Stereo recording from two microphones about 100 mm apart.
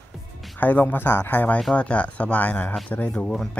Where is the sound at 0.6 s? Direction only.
15° left (ahead or behind).